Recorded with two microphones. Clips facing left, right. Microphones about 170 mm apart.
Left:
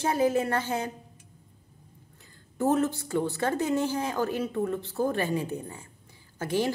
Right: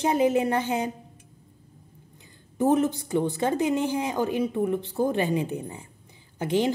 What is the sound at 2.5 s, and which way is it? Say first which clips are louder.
A woman's voice: right 3 dB; 15° right (ahead or behind).